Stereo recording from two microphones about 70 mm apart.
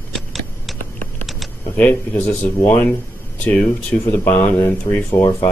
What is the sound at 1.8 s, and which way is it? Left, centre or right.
Speech, left.